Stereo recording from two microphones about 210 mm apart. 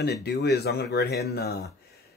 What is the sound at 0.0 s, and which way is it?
Speech, 55° left (ahead or behind).